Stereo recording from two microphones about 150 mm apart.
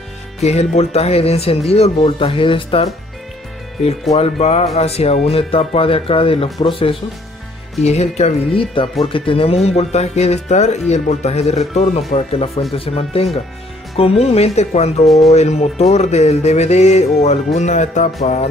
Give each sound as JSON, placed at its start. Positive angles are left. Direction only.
{"t": 0.4, "sound": "speech", "side_deg": 45}
{"t": 4.1, "sound": "speech", "side_deg": 45}